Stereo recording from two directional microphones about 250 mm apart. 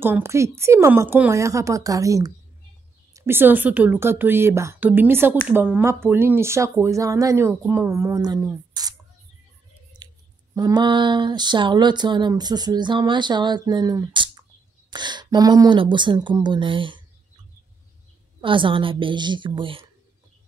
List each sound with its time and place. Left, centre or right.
0.0 s a woman's voice: centre
9.9 s scissors: centre
10.5 s a woman's voice: centre
18.4 s a woman's voice: centre